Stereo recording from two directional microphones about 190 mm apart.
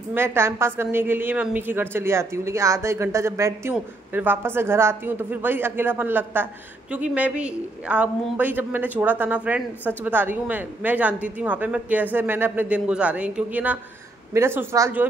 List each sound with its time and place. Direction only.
0.1 s a woman's voice: 10° right (ahead or behind)